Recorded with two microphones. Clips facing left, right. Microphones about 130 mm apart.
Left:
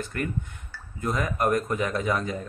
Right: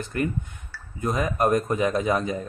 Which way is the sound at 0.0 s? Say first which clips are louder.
Right 3 dB; 20° right (ahead or behind).